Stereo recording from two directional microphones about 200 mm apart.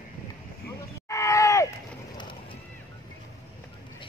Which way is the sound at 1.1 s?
15° left (ahead or behind).